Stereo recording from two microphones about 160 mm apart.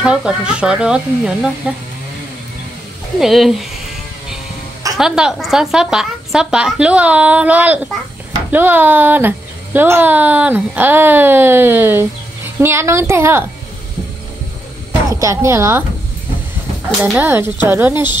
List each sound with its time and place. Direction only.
0.0 s a woman's voice: 5° right (ahead or behind)
3.2 s a woman's voice: centre (ahead or behind)
4.9 s a woman's voice: 5° right (ahead or behind)
14.9 s speech: 20° right (ahead or behind)
17.2 s speech: 15° right (ahead or behind)